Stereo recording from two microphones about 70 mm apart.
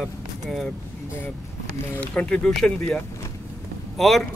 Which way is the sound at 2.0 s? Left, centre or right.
Centre.